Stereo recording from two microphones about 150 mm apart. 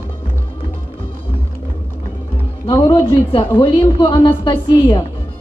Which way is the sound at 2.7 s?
20° left (ahead or behind).